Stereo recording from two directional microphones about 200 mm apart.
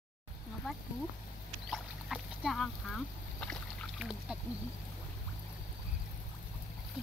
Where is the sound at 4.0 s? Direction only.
5° right (ahead or behind).